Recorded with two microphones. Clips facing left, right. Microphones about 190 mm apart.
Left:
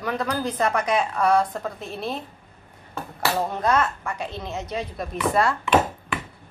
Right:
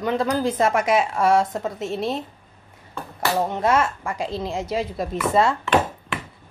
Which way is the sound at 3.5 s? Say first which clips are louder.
Right 2 dB; 25° right (ahead or behind).